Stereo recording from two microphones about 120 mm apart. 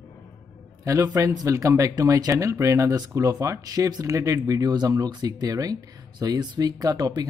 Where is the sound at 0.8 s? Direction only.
25° right (ahead or behind).